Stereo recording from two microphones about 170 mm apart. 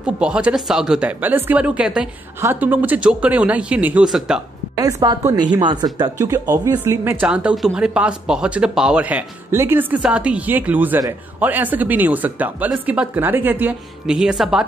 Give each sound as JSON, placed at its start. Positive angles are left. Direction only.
{"t": 0.0, "sound": "speech", "side_deg": -5}
{"t": 4.7, "sound": "speech", "side_deg": -20}